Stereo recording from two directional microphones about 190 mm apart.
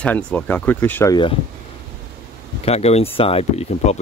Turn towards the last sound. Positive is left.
turn(degrees=30)  # may be behind; listen again after turning